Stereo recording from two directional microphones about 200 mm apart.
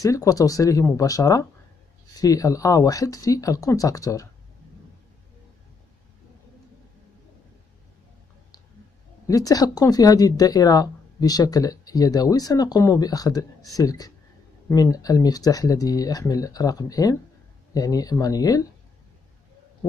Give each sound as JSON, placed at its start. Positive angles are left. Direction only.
{"t": 0.0, "sound": "speech", "side_deg": 15}
{"t": 9.3, "sound": "speech", "side_deg": 20}